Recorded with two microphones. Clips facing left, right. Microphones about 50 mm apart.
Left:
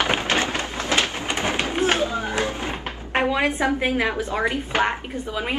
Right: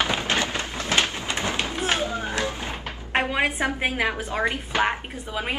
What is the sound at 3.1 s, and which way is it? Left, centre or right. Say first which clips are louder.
A woman's voice: left 2 dB; right.